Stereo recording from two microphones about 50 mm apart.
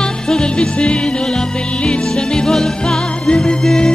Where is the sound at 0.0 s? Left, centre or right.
Centre.